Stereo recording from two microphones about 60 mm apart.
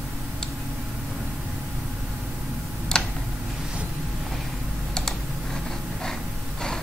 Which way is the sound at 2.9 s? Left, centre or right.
Centre.